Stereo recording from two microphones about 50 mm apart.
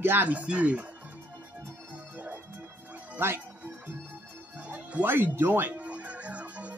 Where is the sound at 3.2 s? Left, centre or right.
Right.